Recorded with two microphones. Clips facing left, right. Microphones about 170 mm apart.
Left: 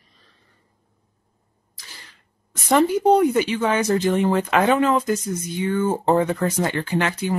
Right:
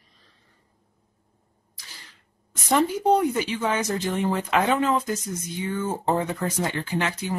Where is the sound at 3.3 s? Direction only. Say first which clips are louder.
Left 5 dB; 75° left (ahead or behind).